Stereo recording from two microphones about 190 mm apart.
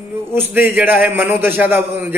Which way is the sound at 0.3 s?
10° right (ahead or behind).